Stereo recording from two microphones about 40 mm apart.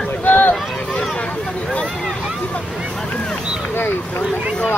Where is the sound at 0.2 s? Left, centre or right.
Left.